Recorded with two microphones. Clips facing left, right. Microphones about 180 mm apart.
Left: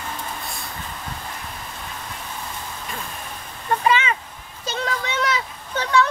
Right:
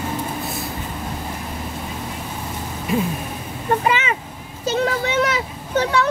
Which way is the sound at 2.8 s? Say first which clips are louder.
Right 17 dB; 10° right (ahead or behind).